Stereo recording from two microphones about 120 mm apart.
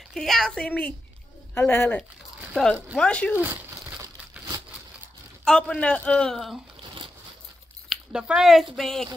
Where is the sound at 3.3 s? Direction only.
15° right (ahead or behind).